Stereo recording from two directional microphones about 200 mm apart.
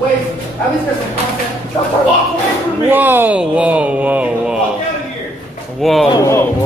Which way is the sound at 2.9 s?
10° right (ahead or behind).